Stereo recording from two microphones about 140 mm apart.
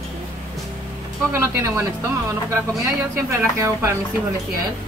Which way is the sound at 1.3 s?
20° right (ahead or behind).